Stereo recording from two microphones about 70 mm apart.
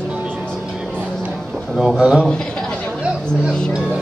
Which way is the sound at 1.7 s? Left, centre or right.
Centre.